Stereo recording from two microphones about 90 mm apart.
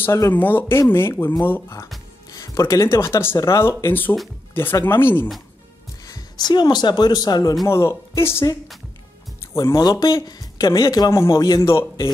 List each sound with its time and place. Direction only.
0.0 s speech: 35° left (ahead or behind)
0.3 s speech: 20° left (ahead or behind)
2.3 s speech: 35° left (ahead or behind)
6.0 s speech: 50° left (ahead or behind)
7.6 s speech: 30° left (ahead or behind)
9.5 s speech: 35° left (ahead or behind)
9.8 s speech: 50° left (ahead or behind)
11.1 s a man's voice: 35° left (ahead or behind)
11.6 s a man's voice: 30° left (ahead or behind)